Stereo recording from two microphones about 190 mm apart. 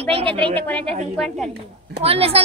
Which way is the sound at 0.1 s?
30° right (ahead or behind).